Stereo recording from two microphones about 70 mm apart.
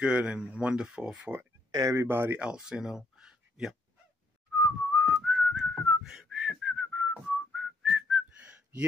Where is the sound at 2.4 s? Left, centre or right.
Centre.